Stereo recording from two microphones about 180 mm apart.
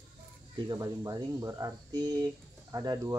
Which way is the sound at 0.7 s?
20° right (ahead or behind).